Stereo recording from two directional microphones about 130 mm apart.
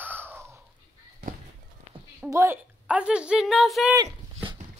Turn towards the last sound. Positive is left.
turn(degrees=0)  # may be behind; listen again after turning